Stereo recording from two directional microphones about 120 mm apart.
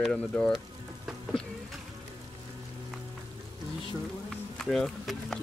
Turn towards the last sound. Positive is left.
turn(degrees=5)  # may be behind; listen again after turning